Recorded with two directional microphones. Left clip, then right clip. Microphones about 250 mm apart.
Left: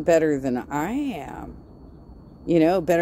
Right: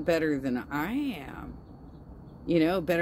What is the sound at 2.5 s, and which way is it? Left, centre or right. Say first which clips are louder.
Speech: left 7 dB; left.